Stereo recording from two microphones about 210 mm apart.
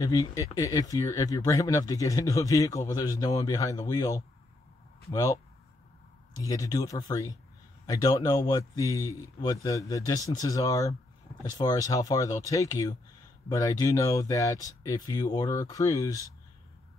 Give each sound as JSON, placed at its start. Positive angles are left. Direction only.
{"t": 0.0, "sound": "speech", "side_deg": 15}